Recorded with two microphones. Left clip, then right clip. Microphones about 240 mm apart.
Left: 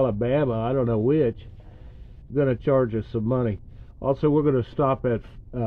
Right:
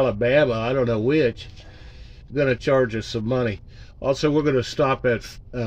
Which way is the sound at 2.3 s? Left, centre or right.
Left.